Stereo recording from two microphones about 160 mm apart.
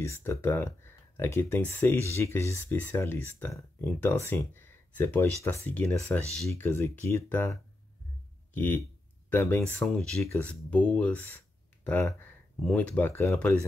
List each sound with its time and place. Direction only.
0.0 s speech: 15° left (ahead or behind)
8.5 s speech: 10° left (ahead or behind)
10.2 s speech: 15° left (ahead or behind)
10.5 s speech: 5° left (ahead or behind)